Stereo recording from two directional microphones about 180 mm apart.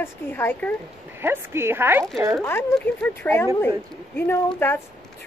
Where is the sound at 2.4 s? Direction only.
15° left (ahead or behind).